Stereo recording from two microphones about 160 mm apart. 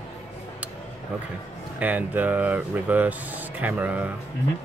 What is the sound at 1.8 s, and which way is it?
Speech, 10° right (ahead or behind).